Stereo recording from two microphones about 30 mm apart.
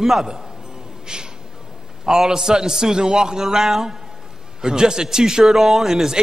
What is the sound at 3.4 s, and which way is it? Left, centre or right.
Speech, centre.